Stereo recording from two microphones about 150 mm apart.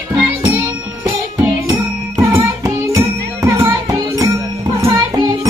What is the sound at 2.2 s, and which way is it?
Music, 15° right (ahead or behind).